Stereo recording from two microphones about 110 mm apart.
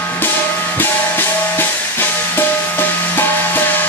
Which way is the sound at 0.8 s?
20° left (ahead or behind).